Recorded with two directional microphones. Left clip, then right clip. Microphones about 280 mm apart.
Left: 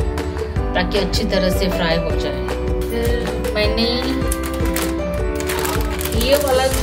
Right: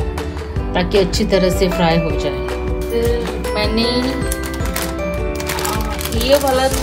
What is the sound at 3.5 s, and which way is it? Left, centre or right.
Music, right.